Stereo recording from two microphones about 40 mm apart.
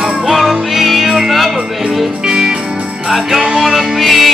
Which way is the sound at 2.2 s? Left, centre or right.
Centre.